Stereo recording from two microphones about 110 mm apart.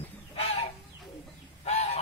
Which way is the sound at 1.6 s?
85° left.